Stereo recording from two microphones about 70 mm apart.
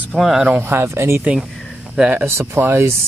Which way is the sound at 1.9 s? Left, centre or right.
Centre.